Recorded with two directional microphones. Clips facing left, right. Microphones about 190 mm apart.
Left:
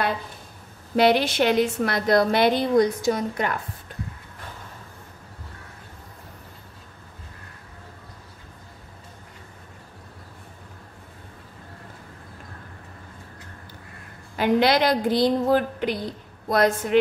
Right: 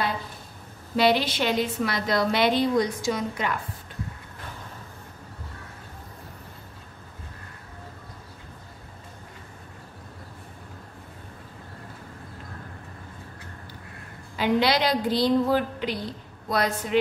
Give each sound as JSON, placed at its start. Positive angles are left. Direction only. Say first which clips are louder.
{"t": 0.9, "sound": "a woman's voice", "louder": "left 3 dB", "side_deg": 55}
{"t": 14.3, "sound": "a woman's voice", "louder": "left 3 dB", "side_deg": 50}